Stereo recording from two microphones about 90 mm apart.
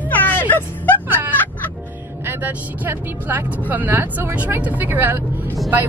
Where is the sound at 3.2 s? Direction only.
20° right (ahead or behind).